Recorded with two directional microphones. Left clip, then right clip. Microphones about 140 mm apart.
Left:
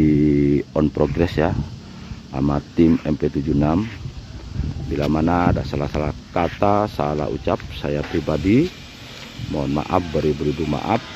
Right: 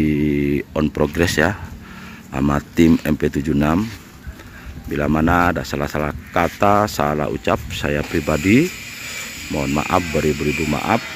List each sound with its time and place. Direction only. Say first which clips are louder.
0.0 s a sound: left 2 dB; 15° left (ahead or behind)
1.1 s speech: right 3 dB; centre (ahead or behind)
3.2 s speech: right 1 dB; 5° right (ahead or behind)
4.9 s speech: right 3 dB; 10° right (ahead or behind)